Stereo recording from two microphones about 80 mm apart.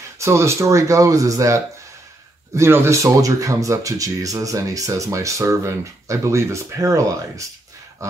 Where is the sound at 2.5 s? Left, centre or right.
Right.